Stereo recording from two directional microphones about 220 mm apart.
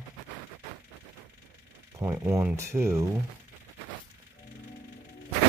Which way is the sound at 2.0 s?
10° right (ahead or behind).